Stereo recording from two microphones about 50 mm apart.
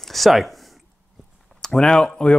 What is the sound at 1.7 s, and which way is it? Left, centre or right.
Speech, centre.